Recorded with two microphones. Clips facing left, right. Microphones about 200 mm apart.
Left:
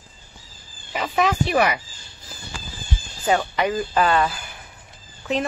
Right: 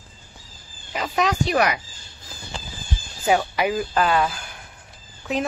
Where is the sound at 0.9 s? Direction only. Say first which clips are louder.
Left 1 dB; centre (ahead or behind).